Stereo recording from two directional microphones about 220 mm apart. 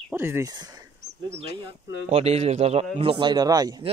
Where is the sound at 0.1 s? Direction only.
10° right (ahead or behind).